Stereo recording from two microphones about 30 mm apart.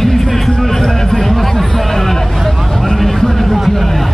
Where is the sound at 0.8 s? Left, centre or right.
Centre.